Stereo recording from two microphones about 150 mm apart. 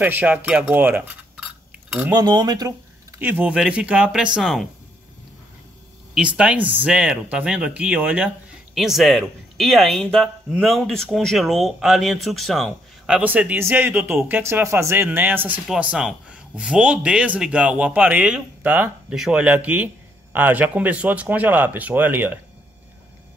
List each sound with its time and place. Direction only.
0.0 s speech: 10° right (ahead or behind)
2.1 s speech: 30° right (ahead or behind)
3.2 s speech: 10° right (ahead or behind)
6.1 s speech: 5° right (ahead or behind)